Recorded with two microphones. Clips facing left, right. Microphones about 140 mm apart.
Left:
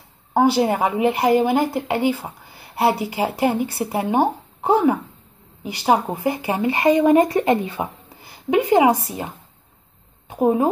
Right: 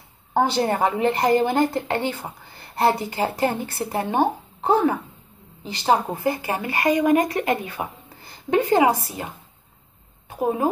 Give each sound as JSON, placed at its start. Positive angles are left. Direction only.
{"t": 0.3, "sound": "speech", "side_deg": 10}
{"t": 8.2, "sound": "speech", "side_deg": 10}
{"t": 10.3, "sound": "a woman's voice", "side_deg": 20}